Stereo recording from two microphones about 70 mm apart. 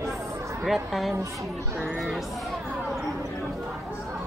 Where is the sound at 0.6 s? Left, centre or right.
Centre.